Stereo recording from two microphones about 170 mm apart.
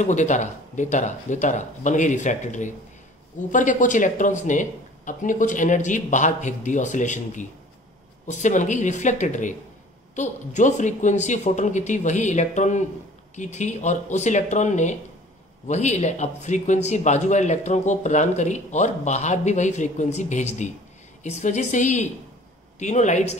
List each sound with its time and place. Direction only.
0.0 s speech: 45° left (ahead or behind)